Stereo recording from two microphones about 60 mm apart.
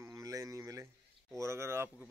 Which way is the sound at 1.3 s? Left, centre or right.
Right.